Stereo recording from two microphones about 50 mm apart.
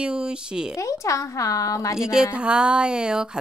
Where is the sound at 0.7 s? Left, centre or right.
Left.